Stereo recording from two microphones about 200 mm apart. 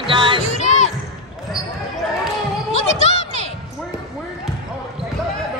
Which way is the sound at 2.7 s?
35° left (ahead or behind).